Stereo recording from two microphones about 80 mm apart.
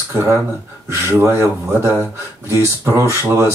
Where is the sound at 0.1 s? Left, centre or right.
Right.